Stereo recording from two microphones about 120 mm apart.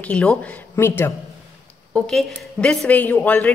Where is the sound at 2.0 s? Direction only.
5° left (ahead or behind).